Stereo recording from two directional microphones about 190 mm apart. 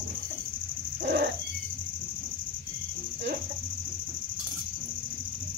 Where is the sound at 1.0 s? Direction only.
60° right (ahead or behind).